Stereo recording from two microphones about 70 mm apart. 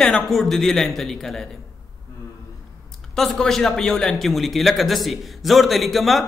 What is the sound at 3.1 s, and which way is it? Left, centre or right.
A man's voice, centre.